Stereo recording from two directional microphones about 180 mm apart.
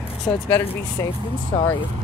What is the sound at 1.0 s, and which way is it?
Speech, 15° left (ahead or behind).